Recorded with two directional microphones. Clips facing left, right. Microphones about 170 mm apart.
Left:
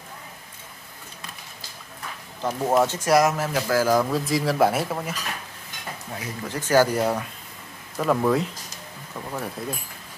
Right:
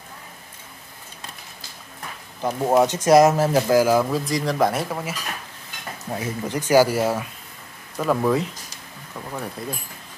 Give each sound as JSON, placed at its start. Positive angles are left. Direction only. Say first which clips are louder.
{"t": 2.4, "sound": "speech", "louder": "right 3 dB", "side_deg": -15}
{"t": 3.7, "sound": "speech", "louder": "right 1 dB", "side_deg": -10}
{"t": 6.0, "sound": "speech", "louder": "right 7 dB", "side_deg": -25}